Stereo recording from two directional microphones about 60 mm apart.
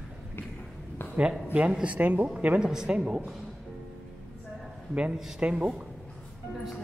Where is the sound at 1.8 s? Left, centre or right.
Right.